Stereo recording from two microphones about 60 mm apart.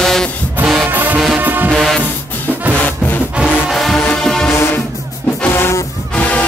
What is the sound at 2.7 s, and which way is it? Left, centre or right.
Music, left.